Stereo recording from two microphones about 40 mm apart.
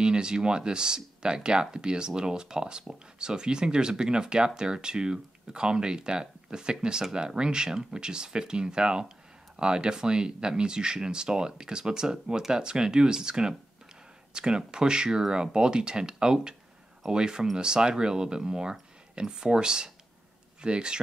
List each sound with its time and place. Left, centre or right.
0.0 s speech: right